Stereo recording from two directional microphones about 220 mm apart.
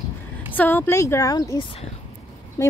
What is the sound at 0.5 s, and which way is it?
A woman's voice, 10° left (ahead or behind).